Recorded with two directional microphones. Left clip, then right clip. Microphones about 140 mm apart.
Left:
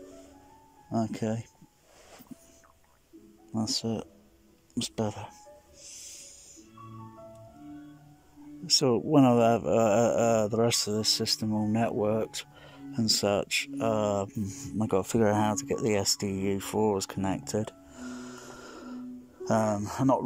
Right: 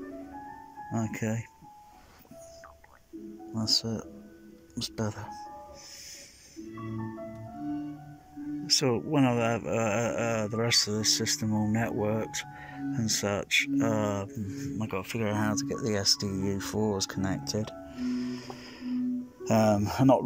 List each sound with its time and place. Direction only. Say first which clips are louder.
0.9 s speech: left 3 dB; 10° left (ahead or behind)
3.5 s speech: right 3 dB; 15° left (ahead or behind)
8.6 s speech: left 2 dB; 20° left (ahead or behind)
14.8 s speech: left 8 dB; 35° left (ahead or behind); by 16.1 s 20° left (ahead or behind)
16.2 s music: left 2 dB; 20° left (ahead or behind)
19.4 s speech: right 2 dB; 5° left (ahead or behind)